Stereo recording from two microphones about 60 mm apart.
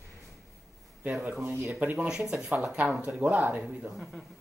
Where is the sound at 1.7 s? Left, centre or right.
Right.